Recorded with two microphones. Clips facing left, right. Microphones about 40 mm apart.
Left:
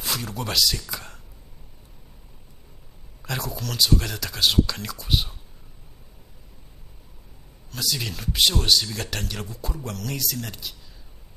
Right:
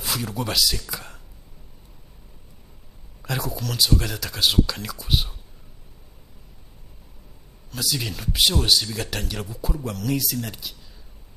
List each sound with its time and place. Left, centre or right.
0.0 s speech: centre
3.2 s speech: centre
7.7 s speech: centre